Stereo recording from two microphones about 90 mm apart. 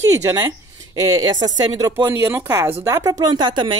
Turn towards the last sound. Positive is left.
turn(degrees=-55)  # may be behind; listen again after turning